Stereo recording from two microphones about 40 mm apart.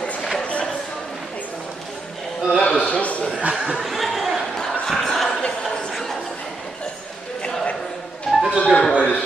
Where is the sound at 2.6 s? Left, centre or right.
Left.